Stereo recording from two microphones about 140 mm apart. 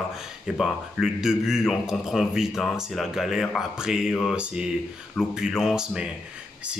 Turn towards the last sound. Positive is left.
turn(degrees=-5)  # may be behind; listen again after turning